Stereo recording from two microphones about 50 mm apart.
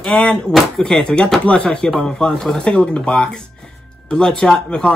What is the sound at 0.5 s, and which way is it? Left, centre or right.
Speech, centre.